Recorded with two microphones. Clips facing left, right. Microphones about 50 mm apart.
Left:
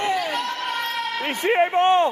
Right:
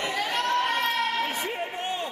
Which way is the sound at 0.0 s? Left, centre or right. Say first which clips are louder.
Left 5 dB; left.